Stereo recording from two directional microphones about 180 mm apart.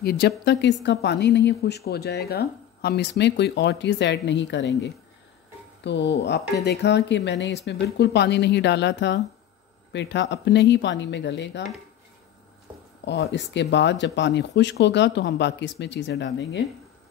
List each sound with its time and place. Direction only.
0.5 s speech: 75° left (ahead or behind)
13.0 s speech: 70° left (ahead or behind); by 16.6 s 85° left